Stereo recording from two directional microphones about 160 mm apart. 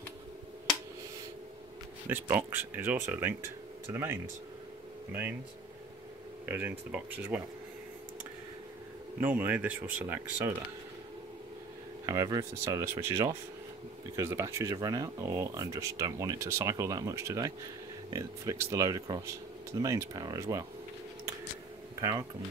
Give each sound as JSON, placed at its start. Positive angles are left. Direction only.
{"t": 2.0, "sound": "speech", "side_deg": -15}
{"t": 6.5, "sound": "speech", "side_deg": -10}
{"t": 9.2, "sound": "speech", "side_deg": -10}
{"t": 12.1, "sound": "speech", "side_deg": -20}